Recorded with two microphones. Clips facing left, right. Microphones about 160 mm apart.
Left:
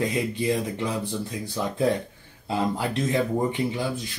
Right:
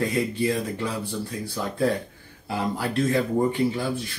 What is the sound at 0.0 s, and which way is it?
Speech, 20° left (ahead or behind).